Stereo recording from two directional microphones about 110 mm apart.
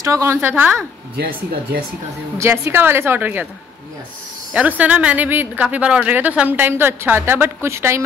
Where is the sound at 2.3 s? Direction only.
25° right (ahead or behind).